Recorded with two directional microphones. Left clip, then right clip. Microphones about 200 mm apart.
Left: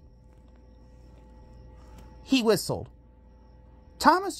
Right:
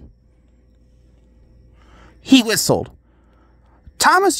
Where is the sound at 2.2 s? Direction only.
45° right (ahead or behind).